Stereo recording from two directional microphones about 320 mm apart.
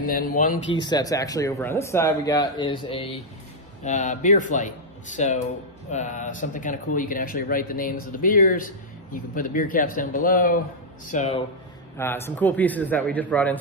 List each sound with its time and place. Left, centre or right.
0.0 s speech: left
0.7 s speech: centre
12.0 s a man's voice: centre